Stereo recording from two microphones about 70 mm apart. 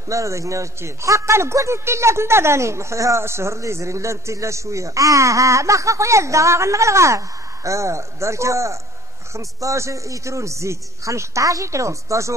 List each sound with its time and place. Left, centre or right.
0.1 s a man's voice: right